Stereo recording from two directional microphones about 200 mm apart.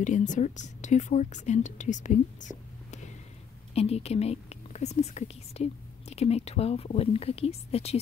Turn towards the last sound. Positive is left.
turn(degrees=30)  # may be behind; listen again after turning